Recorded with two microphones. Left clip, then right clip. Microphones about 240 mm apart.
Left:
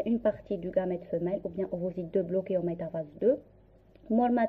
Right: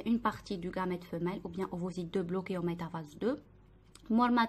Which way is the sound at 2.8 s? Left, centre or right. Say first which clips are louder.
Left 8 dB; right.